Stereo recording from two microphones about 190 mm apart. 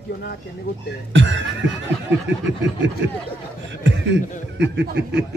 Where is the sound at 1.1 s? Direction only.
75° right (ahead or behind).